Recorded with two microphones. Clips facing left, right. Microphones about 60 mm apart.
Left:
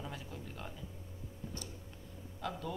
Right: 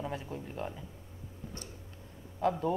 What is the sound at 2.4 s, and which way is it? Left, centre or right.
Speech, right.